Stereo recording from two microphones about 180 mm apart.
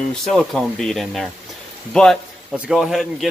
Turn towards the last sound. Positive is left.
turn(degrees=0)  # may be behind; listen again after turning